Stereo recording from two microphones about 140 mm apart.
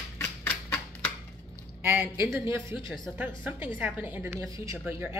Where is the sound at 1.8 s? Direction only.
15° right (ahead or behind).